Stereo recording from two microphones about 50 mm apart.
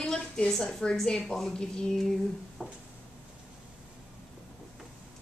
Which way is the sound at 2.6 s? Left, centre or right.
Left.